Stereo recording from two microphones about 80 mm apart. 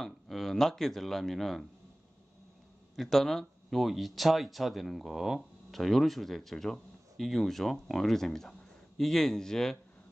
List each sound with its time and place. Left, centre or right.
0.0 s speech: centre
3.0 s speech: centre